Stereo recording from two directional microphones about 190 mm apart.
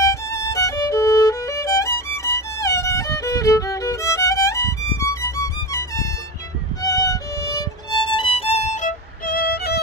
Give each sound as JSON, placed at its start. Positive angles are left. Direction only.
{"t": 0.0, "sound": "violin", "side_deg": 15}
{"t": 6.8, "sound": "music", "side_deg": 20}